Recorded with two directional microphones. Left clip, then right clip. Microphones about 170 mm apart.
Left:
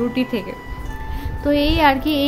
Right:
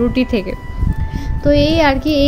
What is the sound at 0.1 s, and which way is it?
Speech, 30° right (ahead or behind).